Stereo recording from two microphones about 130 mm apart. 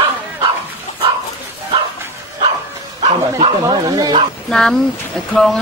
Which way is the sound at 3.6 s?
35° right (ahead or behind).